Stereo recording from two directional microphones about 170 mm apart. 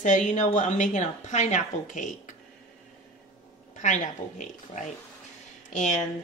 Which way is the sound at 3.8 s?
45° left (ahead or behind).